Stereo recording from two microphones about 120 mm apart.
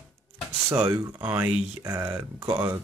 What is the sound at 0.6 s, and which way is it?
Speech, 20° right (ahead or behind).